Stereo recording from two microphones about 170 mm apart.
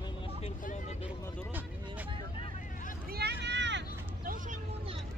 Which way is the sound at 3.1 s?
70° right (ahead or behind).